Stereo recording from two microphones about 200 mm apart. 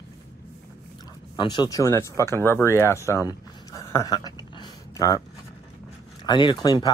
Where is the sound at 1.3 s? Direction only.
20° left (ahead or behind).